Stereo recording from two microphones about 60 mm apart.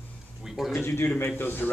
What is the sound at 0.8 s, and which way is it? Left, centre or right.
Speech, left.